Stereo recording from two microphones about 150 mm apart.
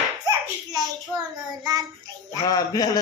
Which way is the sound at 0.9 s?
25° right (ahead or behind).